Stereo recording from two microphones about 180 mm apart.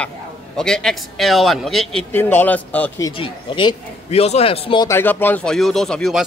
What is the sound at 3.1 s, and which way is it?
A man's voice, 30° left (ahead or behind).